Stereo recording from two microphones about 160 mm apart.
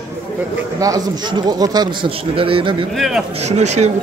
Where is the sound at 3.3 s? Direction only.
45° right (ahead or behind).